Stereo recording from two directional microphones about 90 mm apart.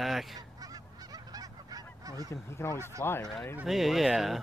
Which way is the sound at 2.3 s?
35° left (ahead or behind).